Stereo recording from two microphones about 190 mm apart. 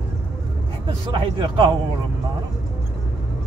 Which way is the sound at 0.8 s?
25° right (ahead or behind).